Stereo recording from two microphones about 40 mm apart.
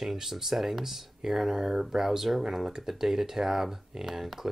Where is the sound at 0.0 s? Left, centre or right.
Centre.